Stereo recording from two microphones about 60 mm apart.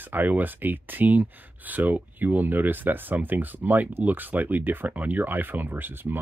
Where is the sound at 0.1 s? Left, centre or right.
Right.